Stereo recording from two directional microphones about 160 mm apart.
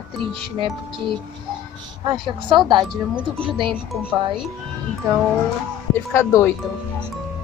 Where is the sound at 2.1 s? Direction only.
30° right (ahead or behind).